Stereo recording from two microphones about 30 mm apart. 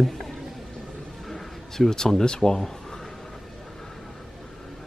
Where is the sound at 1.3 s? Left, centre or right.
Centre.